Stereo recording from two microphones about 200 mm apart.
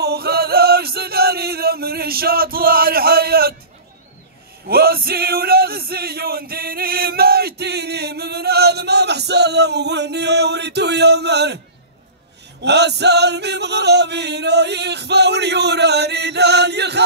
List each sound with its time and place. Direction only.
0.0 s chant: 50° right (ahead or behind)
4.6 s music: 50° right (ahead or behind)
12.6 s music: 55° right (ahead or behind)